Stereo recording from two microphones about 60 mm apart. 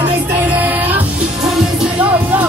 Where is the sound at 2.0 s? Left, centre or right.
Right.